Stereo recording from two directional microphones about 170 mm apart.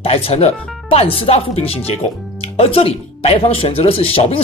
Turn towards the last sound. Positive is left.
turn(degrees=35)  # may be behind; listen again after turning